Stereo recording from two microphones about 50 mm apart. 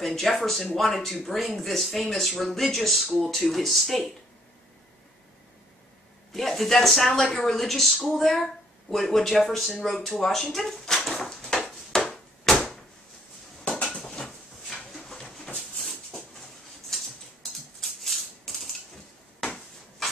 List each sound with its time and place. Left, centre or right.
0.0 s speech: centre
6.3 s speech: centre
11.1 s a sound: centre
12.5 s door: centre
13.7 s dishes: left
15.0 s a sound: centre
15.8 s maraca: centre